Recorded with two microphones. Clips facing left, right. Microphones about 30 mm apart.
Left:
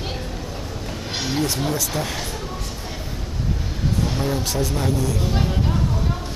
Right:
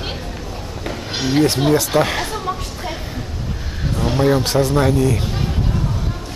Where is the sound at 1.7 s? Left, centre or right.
Right.